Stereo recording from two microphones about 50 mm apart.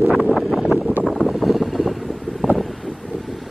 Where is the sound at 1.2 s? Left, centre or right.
Centre.